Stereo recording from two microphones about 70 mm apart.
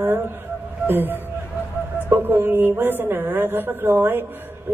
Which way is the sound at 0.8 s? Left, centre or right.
Right.